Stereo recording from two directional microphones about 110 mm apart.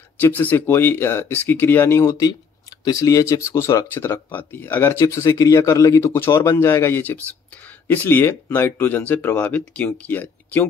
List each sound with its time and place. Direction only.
0.2 s speech: 15° left (ahead or behind)